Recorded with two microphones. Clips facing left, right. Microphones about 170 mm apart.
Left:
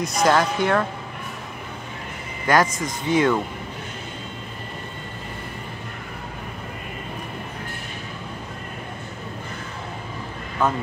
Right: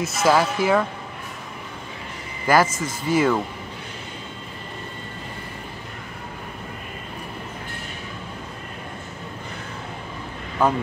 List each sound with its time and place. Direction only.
0.0 s speech: 5° right (ahead or behind)
2.4 s speech: 5° right (ahead or behind)
10.6 s speech: 10° right (ahead or behind)